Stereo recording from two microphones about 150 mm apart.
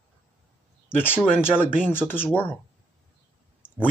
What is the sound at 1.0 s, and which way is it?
Speech, 15° left (ahead or behind).